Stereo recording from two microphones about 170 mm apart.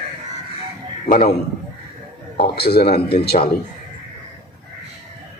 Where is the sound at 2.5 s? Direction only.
70° left (ahead or behind).